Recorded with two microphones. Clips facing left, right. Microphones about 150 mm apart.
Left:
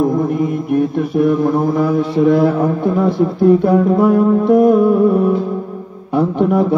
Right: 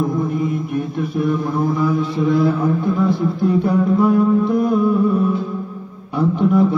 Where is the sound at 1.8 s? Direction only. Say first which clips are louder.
Left 5 dB; 65° left (ahead or behind).